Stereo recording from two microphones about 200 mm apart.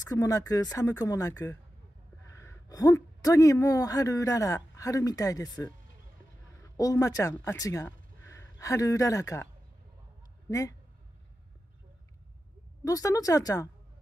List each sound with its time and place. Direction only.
0.1 s speech: 15° left (ahead or behind)
6.8 s speech: 15° left (ahead or behind)
12.8 s speech: 15° left (ahead or behind)